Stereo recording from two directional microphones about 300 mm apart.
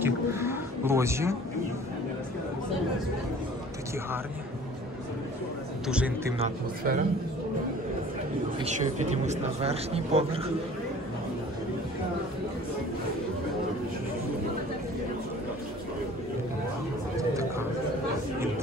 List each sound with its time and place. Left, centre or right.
0.0 s wild animals: centre
5.9 s speech: centre
6.3 s speech: right
8.6 s speech: right
17.2 s a sound: centre